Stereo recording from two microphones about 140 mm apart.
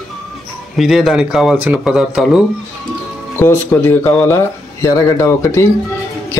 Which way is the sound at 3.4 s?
15° left (ahead or behind).